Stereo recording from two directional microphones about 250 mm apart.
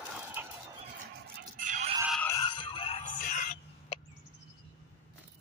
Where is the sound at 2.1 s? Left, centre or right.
Centre.